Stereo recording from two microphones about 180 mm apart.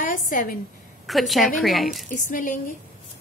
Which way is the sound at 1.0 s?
Centre (ahead or behind).